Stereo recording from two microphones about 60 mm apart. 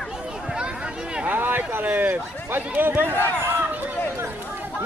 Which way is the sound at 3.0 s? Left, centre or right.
Right.